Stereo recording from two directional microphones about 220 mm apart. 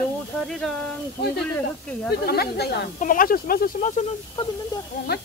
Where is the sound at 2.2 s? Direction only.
45° left (ahead or behind).